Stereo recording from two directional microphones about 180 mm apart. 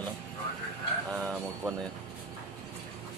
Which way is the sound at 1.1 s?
10° right (ahead or behind).